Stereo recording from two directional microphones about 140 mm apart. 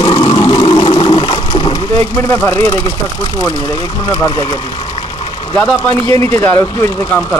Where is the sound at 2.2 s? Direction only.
20° left (ahead or behind).